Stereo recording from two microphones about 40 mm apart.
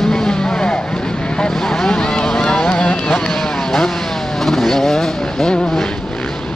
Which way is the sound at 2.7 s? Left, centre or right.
Left.